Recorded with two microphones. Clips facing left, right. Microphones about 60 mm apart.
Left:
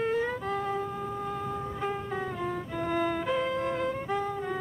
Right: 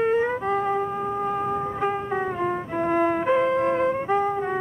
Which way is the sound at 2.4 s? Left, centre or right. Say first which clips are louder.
Right 7 dB; right.